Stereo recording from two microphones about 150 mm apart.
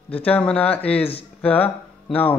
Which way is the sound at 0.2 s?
10° left (ahead or behind).